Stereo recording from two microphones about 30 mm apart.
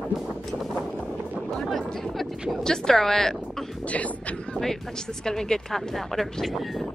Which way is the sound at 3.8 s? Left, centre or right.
Left.